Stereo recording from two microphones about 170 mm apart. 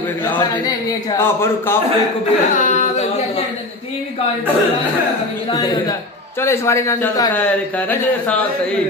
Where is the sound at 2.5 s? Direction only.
45° left (ahead or behind).